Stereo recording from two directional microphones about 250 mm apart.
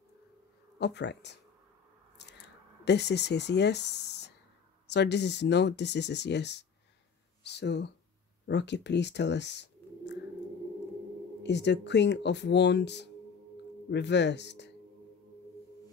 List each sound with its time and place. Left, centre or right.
0.7 s speech: left
2.1 s a sound: left
4.8 s speech: left
11.4 s speech: left